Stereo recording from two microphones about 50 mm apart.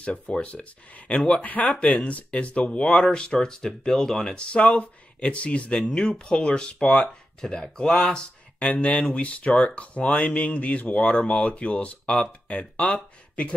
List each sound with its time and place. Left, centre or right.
0.0 s speech: left